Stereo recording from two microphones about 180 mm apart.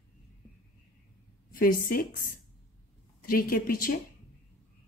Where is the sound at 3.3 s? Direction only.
55° left (ahead or behind).